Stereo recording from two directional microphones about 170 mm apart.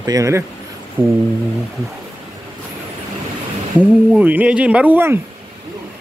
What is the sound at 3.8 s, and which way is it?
Speech, 10° right (ahead or behind).